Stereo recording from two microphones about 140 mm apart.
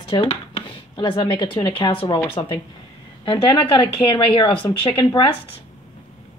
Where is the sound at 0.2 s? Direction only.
45° left (ahead or behind).